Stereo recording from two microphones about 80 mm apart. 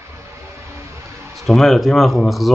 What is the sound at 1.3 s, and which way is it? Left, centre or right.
Speech, centre.